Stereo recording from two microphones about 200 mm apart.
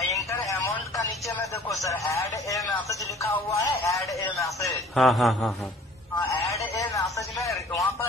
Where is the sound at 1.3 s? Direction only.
15° left (ahead or behind).